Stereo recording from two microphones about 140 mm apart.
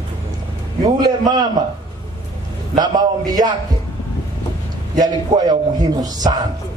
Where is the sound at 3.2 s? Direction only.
30° right (ahead or behind).